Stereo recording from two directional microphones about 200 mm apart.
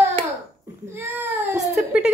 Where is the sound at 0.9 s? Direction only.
10° right (ahead or behind).